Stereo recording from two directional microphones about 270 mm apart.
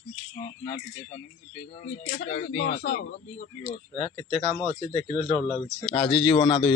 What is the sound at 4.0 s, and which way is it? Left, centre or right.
Speech, centre.